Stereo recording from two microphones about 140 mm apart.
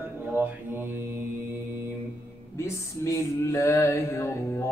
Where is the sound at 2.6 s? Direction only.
20° left (ahead or behind).